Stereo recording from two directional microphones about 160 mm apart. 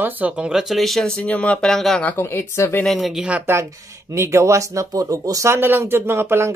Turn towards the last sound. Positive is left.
turn(degrees=-15)  # may be behind; listen again after turning